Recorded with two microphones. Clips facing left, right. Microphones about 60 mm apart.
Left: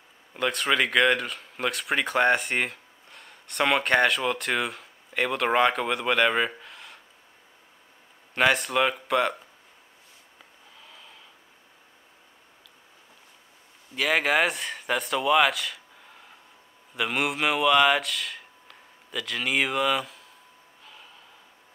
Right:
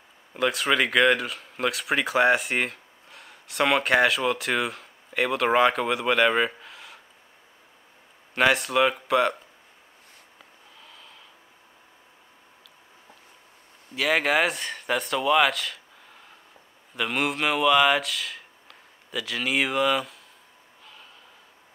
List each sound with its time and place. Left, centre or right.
0.3 s speech: centre
8.4 s speech: centre
10.8 s snort: centre
13.9 s speech: centre
20.8 s a sound: centre